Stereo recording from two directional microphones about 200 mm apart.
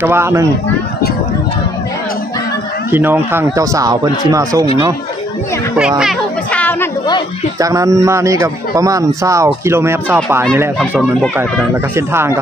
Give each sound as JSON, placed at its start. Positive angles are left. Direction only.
{"t": 0.0, "sound": "speech", "side_deg": -10}
{"t": 2.9, "sound": "speech", "side_deg": -10}
{"t": 5.8, "sound": "a child's voice", "side_deg": -5}
{"t": 6.5, "sound": "a sound", "side_deg": 10}
{"t": 7.5, "sound": "speech", "side_deg": -15}